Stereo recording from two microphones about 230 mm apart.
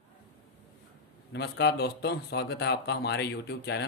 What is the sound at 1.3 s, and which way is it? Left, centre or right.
Speech, left.